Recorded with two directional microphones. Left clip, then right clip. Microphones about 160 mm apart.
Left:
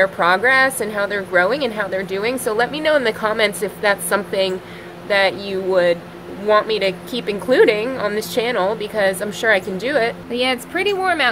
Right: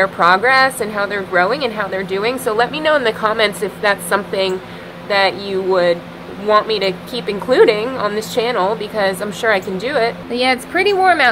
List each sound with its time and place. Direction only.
0.0 s a woman's voice: 15° left (ahead or behind)
10.3 s speech: centre (ahead or behind)